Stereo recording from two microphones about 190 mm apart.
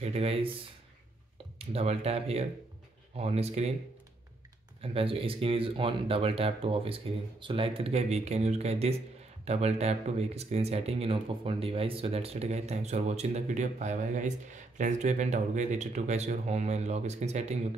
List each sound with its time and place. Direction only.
0.0 s speech: 30° right (ahead or behind)
1.6 s speech: 30° right (ahead or behind)
4.8 s speech: 30° right (ahead or behind)